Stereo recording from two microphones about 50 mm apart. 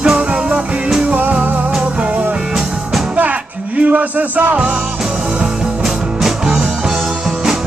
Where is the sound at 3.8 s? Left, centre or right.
Right.